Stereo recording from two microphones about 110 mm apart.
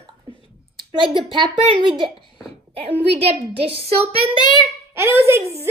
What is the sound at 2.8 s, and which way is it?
Speech, 65° right (ahead or behind).